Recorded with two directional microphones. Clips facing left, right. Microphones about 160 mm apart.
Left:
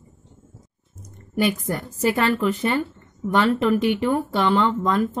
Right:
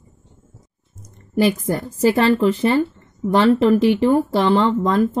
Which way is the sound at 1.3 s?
30° right (ahead or behind).